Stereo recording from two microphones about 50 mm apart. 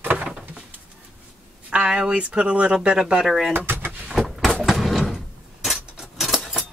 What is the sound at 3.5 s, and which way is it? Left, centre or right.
Vehicle, right.